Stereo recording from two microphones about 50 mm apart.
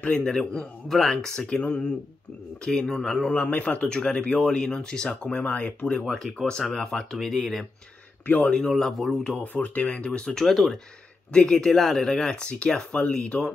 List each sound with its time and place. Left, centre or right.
0.2 s speech: centre
0.8 s speech: centre
3.3 s speech: left
5.9 s speech: centre
9.1 s speech: centre
9.4 s speech: left
9.8 s speech: left; by 10.8 s centre
11.3 s speech: centre